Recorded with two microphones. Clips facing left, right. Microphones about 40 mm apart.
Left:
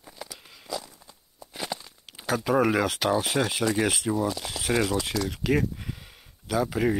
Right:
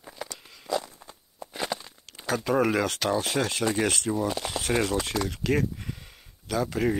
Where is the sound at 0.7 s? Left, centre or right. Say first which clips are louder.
Right 6 dB; right.